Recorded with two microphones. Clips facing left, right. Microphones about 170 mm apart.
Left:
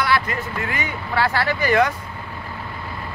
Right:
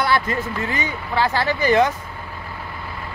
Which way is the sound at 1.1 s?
20° right (ahead or behind).